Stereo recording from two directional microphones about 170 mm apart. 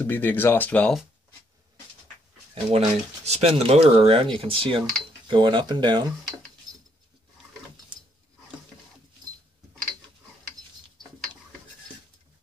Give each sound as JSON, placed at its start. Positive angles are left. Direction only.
{"t": 0.0, "sound": "speech", "side_deg": 10}
{"t": 2.5, "sound": "speech", "side_deg": -40}